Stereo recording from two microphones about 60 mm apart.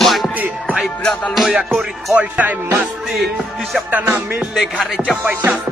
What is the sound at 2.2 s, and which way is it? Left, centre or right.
Music, right.